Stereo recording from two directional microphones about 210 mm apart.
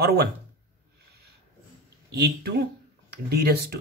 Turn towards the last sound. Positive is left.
turn(degrees=-50)  # may be behind; listen again after turning